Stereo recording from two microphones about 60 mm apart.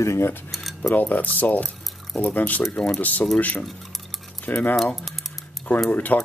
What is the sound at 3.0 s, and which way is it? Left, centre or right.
Speech, left.